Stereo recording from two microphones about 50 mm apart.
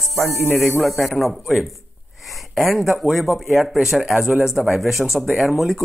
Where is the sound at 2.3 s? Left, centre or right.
Centre.